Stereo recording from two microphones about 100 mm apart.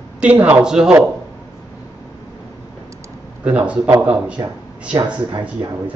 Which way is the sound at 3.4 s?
10° right (ahead or behind).